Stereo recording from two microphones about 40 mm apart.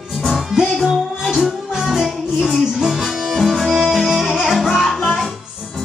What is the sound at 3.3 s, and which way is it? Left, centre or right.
Music, centre.